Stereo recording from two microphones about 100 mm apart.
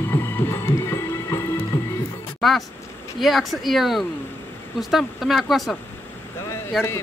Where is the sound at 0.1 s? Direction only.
25° left (ahead or behind).